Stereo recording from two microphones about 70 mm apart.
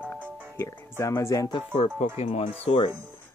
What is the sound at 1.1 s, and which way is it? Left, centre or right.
Speech, left.